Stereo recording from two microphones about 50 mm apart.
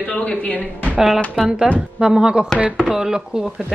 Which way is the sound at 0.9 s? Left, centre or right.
Centre.